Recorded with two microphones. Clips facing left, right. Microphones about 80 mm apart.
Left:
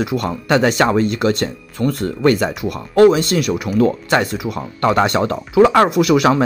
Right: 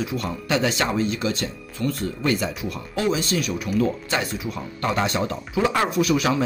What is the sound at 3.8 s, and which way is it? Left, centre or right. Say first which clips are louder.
Speech: left 12 dB; left.